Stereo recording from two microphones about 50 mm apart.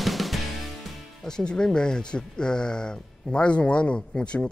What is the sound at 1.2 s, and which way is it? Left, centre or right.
Speech, centre.